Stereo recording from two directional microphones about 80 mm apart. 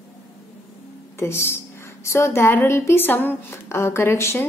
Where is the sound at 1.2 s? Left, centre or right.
Left.